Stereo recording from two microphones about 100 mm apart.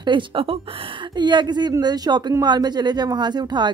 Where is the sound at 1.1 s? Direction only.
45° right (ahead or behind).